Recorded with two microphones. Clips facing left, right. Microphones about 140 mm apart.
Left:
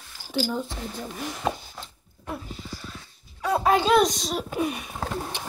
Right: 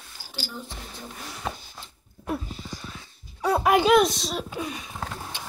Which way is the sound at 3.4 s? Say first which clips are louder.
Right 1 dB; 15° right (ahead or behind).